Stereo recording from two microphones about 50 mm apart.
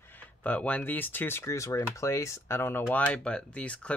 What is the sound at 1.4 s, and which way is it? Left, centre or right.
Speech, left.